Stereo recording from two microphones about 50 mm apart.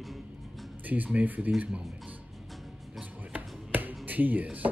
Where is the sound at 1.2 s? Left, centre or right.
Right.